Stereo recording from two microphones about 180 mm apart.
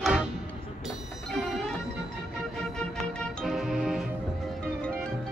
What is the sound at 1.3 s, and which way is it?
Music, 5° left (ahead or behind).